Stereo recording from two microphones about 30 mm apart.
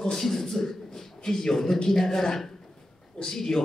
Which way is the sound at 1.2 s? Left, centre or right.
Centre.